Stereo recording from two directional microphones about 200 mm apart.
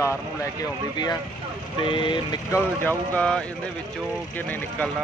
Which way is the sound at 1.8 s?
25° left (ahead or behind).